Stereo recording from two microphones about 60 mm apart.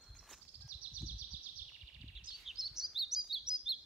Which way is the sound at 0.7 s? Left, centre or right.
Right.